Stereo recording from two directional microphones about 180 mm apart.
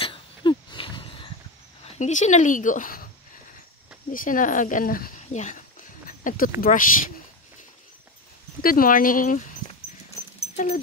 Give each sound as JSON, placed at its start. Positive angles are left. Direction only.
{"t": 0.0, "sound": "a sound", "side_deg": 30}
{"t": 1.9, "sound": "speech", "side_deg": 40}
{"t": 4.1, "sound": "speech", "side_deg": 50}
{"t": 8.6, "sound": "speech", "side_deg": 50}
{"t": 10.5, "sound": "dog", "side_deg": 45}